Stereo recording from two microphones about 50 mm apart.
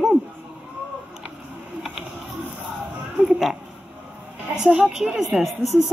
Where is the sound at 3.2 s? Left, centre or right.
Centre.